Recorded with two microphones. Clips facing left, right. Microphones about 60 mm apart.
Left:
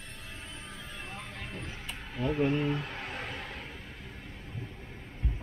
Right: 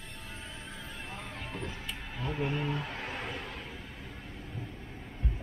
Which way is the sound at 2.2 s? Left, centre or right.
Centre.